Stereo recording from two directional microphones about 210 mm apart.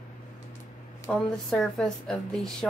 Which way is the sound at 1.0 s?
5° left (ahead or behind).